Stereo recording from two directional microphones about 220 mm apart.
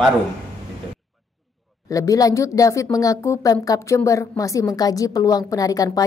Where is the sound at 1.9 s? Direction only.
15° left (ahead or behind).